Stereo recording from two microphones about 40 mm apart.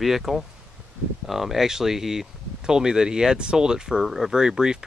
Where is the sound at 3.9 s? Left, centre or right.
Centre.